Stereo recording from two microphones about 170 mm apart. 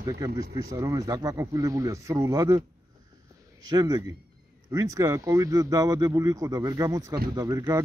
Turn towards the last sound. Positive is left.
turn(degrees=-20)  # may be behind; listen again after turning